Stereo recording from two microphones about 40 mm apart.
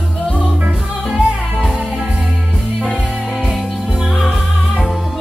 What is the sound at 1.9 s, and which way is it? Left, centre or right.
Music, right.